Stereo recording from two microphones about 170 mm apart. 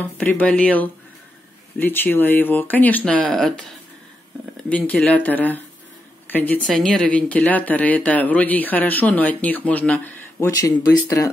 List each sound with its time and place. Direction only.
0.0 s speech: 10° left (ahead or behind)
4.6 s a woman's voice: 10° left (ahead or behind)